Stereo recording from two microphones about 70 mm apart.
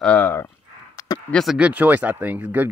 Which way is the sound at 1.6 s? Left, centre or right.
Right.